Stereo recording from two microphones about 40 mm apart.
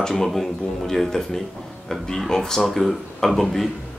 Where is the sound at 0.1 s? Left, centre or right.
Centre.